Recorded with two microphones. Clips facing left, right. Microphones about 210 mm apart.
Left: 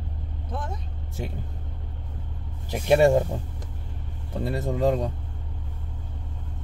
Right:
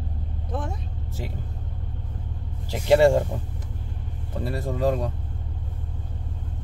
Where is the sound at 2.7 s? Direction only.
15° left (ahead or behind).